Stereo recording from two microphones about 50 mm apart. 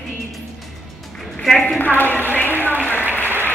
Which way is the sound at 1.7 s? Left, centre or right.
Left.